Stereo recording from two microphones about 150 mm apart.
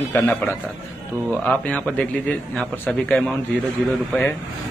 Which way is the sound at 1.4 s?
10° left (ahead or behind).